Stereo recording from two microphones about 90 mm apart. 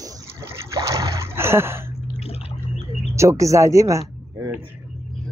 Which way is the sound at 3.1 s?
30° right (ahead or behind).